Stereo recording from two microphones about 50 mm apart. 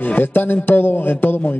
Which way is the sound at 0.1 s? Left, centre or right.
Left.